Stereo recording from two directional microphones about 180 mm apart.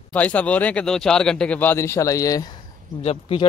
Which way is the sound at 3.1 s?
30° left (ahead or behind).